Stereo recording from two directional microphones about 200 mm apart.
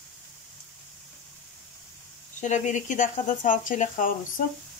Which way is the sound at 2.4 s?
35° left (ahead or behind).